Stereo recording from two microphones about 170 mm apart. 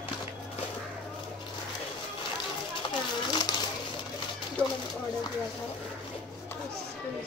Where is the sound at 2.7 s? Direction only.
30° left (ahead or behind).